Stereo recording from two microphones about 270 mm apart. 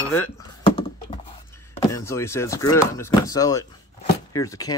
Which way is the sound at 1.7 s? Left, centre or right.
Centre.